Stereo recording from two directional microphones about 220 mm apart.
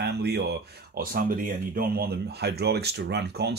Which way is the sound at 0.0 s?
50° right (ahead or behind).